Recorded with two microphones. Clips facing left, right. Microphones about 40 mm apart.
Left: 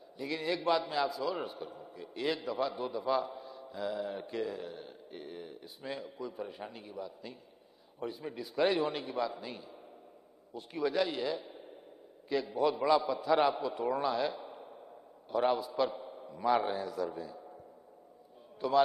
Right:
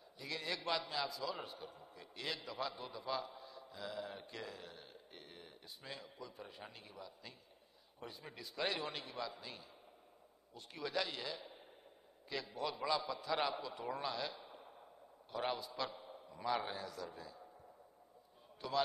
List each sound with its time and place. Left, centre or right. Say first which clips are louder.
0.2 s a man's voice: left 9 dB; centre
18.6 s a man's voice: left 11 dB; centre